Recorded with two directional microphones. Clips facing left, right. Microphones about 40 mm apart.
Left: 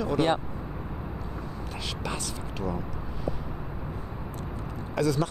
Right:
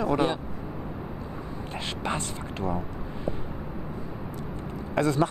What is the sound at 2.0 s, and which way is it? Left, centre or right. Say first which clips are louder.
Speech: right 3 dB; right.